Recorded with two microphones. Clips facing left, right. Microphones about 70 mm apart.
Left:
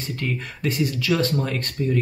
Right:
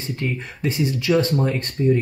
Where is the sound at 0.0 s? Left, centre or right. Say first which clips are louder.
Right 1 dB; right.